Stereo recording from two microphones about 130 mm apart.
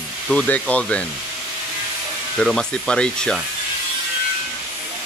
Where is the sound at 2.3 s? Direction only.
5° left (ahead or behind).